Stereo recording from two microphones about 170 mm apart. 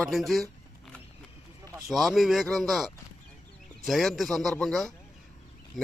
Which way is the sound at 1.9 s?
Centre (ahead or behind).